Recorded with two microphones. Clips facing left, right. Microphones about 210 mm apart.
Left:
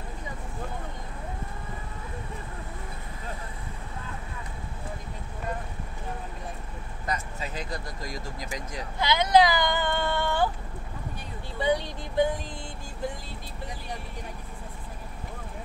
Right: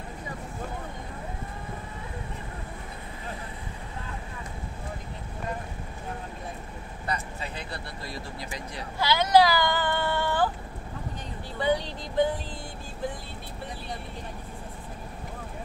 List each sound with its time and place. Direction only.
7.5 s speech: 40° left (ahead or behind)
9.0 s a sound: 20° left (ahead or behind)
11.6 s speech: 15° left (ahead or behind)